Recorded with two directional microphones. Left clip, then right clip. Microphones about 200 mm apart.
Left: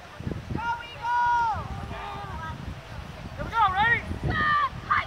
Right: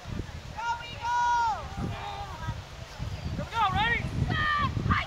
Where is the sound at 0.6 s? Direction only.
55° right (ahead or behind).